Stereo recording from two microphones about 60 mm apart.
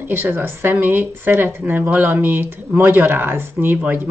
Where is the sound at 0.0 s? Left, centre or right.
Right.